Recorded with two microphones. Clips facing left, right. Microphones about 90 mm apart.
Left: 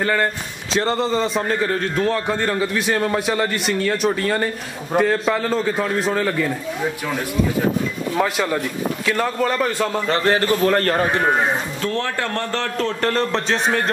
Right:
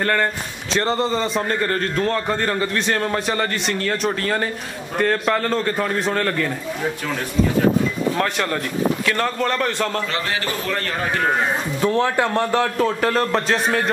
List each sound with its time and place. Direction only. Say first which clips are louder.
0.0 s a man's voice: even; 5° left (ahead or behind)
8.2 s a man's voice: left 2 dB; 5° left (ahead or behind)
10.1 s a man's voice: left 6 dB; 40° left (ahead or behind)
11.8 s a man's voice: right 5 dB; 15° right (ahead or behind)